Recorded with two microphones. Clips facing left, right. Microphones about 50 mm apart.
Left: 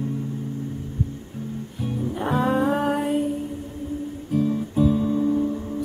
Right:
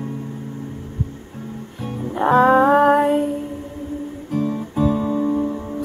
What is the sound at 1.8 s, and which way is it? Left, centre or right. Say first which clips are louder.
Music: right 6 dB; right.